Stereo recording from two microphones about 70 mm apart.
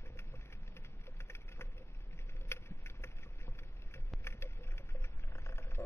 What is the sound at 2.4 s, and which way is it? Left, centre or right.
Boat, left.